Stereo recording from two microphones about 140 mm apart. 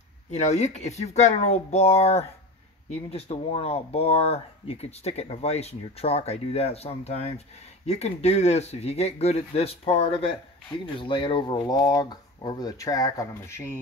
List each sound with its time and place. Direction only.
0.3 s speech: 55° left (ahead or behind); by 13.7 s 20° left (ahead or behind)